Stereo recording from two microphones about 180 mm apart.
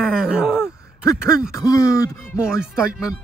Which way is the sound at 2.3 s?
5° right (ahead or behind).